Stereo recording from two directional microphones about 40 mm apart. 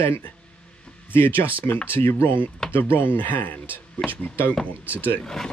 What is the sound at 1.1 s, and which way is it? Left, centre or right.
Speech, left.